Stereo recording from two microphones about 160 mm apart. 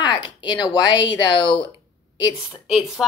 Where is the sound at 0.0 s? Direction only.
30° left (ahead or behind).